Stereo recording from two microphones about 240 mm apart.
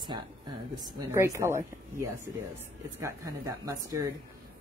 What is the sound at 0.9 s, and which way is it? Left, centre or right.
Speech, centre.